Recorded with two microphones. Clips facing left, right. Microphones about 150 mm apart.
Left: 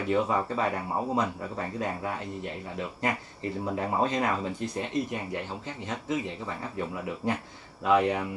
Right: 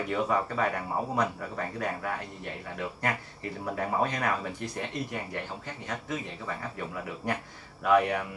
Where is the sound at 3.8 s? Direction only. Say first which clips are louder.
Left 1 dB; 25° left (ahead or behind).